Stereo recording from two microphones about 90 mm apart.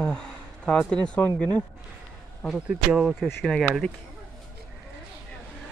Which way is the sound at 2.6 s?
15° right (ahead or behind).